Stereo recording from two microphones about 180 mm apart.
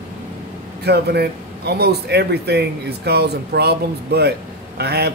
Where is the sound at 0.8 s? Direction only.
65° right (ahead or behind).